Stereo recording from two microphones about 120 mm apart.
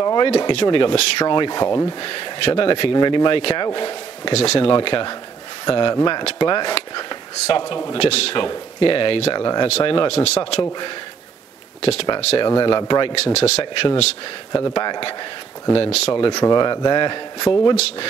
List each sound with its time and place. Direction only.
0.0 s a sound: 35° left (ahead or behind)
0.4 s speech: 45° left (ahead or behind)
2.0 s speech: 45° left (ahead or behind)
4.3 s speech: 55° left (ahead or behind); by 7.2 s 40° left (ahead or behind)
7.9 s speech: 55° left (ahead or behind); by 9.7 s 40° left (ahead or behind)
9.7 s speech: 55° left (ahead or behind)
11.8 s speech: 55° left (ahead or behind)
12.4 s speech: 40° left (ahead or behind)
13.1 s speech: 60° left (ahead or behind)
14.5 s speech: 45° left (ahead or behind)
16.3 s speech: 35° left (ahead or behind)